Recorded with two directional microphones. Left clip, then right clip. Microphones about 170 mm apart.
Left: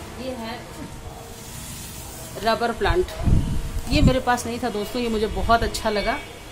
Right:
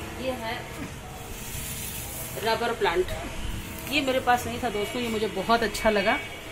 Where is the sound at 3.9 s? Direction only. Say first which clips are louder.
Left 2 dB; 50° left (ahead or behind).